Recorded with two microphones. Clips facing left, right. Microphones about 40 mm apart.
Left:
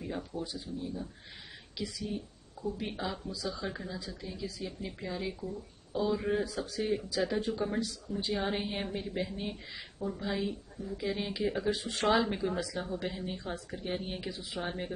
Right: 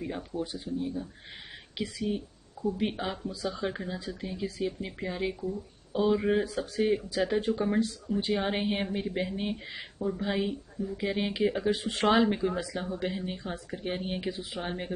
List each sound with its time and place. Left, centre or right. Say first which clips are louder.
0.4 s speech: right 5 dB; right
11.7 s speech: right 1 dB; right
12.3 s speech: right 4 dB; centre